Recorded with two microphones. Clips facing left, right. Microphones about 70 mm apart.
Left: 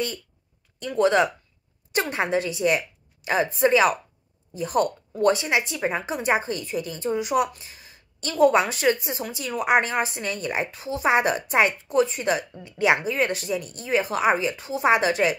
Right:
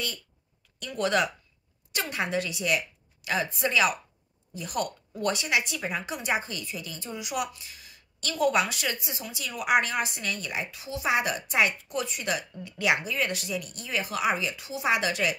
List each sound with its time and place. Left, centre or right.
0.7 s a woman's voice: left